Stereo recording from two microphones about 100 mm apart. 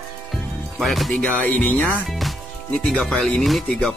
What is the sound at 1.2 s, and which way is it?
Music, 15° left (ahead or behind).